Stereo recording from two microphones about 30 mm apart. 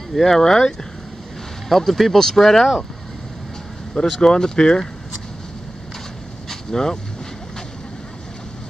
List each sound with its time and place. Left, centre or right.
0.1 s speech: centre
1.8 s speech: centre
3.9 s speech: centre
6.7 s speech: centre